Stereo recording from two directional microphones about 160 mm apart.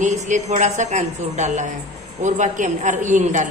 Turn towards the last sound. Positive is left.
turn(degrees=-50)  # may be behind; listen again after turning